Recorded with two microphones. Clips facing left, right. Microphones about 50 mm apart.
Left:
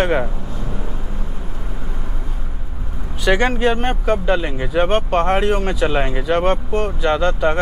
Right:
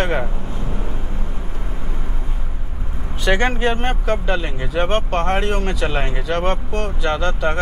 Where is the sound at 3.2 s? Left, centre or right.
Centre.